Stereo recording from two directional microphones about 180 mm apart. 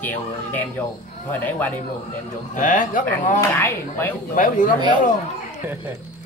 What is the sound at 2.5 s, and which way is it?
Speech, 45° left (ahead or behind).